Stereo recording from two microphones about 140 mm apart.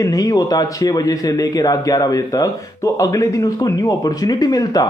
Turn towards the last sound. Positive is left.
turn(degrees=25)  # may be behind; listen again after turning